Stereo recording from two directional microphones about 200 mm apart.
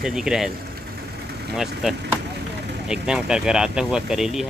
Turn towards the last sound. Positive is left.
turn(degrees=0)  # may be behind; listen again after turning